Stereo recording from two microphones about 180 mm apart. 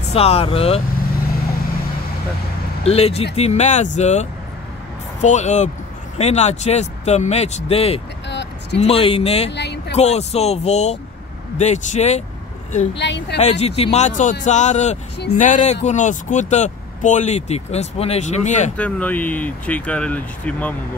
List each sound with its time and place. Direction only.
0.1 s speech: 35° left (ahead or behind)
2.8 s speech: 35° left (ahead or behind)
8.3 s a sound: 70° left (ahead or behind)
8.7 s speech: 35° left (ahead or behind)
9.5 s a sound: 70° left (ahead or behind)
9.9 s speech: 35° left (ahead or behind)
12.9 s speech: 75° left (ahead or behind)
13.4 s speech: 35° left (ahead or behind)
18.8 s speech: 10° left (ahead or behind)